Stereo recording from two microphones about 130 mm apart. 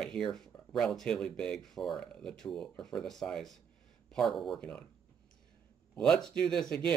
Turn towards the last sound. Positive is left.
turn(degrees=5)  # may be behind; listen again after turning